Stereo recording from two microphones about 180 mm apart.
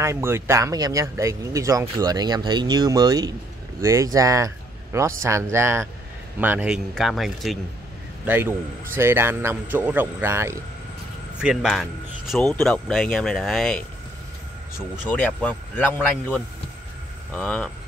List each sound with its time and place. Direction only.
0.0 s a man's voice: 15° right (ahead or behind)
8.3 s a man's voice: 10° right (ahead or behind)
11.4 s speech: centre (ahead or behind)
12.4 s a man's voice: 15° left (ahead or behind)
12.6 s speech: 5° left (ahead or behind)
15.0 s a man's voice: 10° left (ahead or behind)